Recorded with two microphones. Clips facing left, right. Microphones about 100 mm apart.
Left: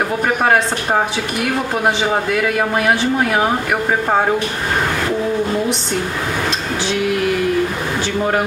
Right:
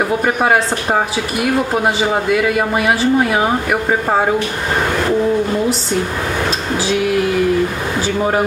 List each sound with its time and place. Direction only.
1.4 s speech: 5° right (ahead or behind)